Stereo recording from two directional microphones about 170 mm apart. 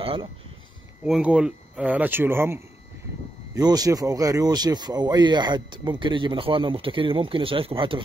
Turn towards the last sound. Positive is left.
turn(degrees=-30)  # may be behind; listen again after turning